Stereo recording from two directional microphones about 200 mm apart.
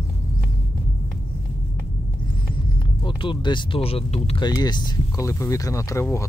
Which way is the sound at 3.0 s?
25° left (ahead or behind).